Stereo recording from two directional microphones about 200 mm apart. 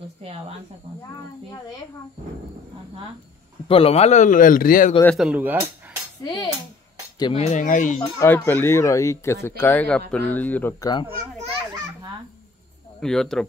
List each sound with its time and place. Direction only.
0.2 s speech: 30° right (ahead or behind)
3.6 s a man's voice: 30° left (ahead or behind); by 4.9 s 45° left (ahead or behind)
5.0 s speech: centre (ahead or behind)
6.2 s cutlery: 20° left (ahead or behind)
7.2 s a man's voice: 25° left (ahead or behind)
8.0 s speech: 10° left (ahead or behind)
13.0 s speech: 5° left (ahead or behind)